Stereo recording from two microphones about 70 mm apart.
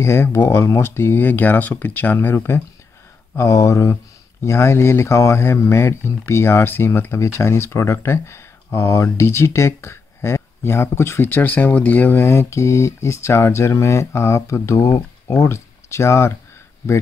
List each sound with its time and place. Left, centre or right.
0.0 s speech: left
3.3 s speech: left